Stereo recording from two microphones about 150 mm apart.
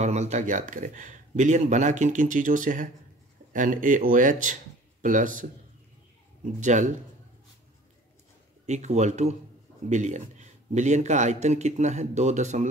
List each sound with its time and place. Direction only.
0.0 s speech: 50° right (ahead or behind)
8.6 s a man's voice: 50° right (ahead or behind)